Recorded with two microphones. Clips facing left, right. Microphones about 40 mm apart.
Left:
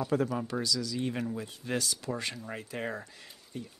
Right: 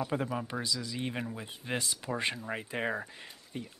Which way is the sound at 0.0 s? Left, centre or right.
Right.